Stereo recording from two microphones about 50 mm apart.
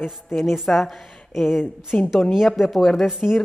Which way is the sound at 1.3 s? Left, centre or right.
Centre.